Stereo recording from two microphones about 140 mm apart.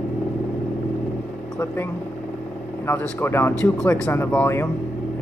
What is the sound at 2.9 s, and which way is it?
Speech, 15° left (ahead or behind).